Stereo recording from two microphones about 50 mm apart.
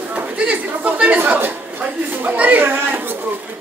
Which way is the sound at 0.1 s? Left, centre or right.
Right.